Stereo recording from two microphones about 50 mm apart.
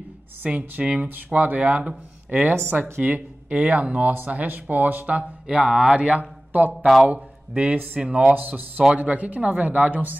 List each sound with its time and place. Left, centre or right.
0.4 s speech: right
5.6 s speech: centre
5.9 s speech: right
8.0 s speech: right
8.4 s speech: right